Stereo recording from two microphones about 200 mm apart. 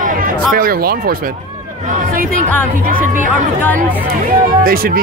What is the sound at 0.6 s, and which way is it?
Speech, 50° right (ahead or behind).